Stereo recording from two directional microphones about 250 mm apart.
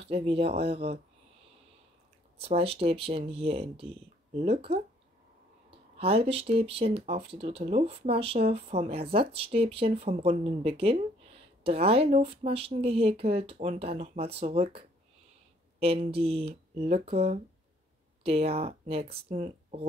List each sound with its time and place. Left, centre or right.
0.0 s speech: right
2.4 s speech: right
15.8 s speech: right